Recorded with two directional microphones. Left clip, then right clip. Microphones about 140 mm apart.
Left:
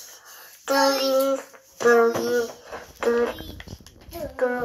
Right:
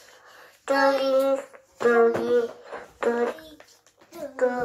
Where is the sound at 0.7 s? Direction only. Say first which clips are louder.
Left 1 dB; 15° right (ahead or behind).